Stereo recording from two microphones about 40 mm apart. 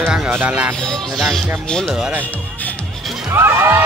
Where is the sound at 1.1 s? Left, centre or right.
Centre.